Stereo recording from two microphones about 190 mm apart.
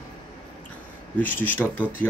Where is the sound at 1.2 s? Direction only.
10° left (ahead or behind).